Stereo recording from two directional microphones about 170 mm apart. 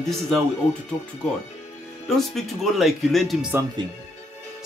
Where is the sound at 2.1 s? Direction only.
Centre (ahead or behind).